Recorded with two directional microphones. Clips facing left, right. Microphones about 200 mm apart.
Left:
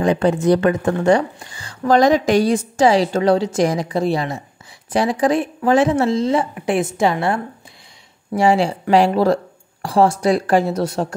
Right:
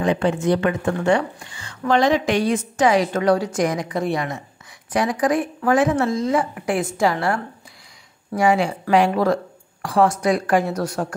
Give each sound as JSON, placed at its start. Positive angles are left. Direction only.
{"t": 0.0, "sound": "speech", "side_deg": 40}